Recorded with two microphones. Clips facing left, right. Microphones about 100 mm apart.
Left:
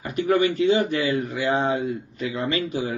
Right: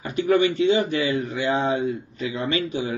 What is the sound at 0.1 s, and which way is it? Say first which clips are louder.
A man's voice: right 1 dB; 35° left (ahead or behind).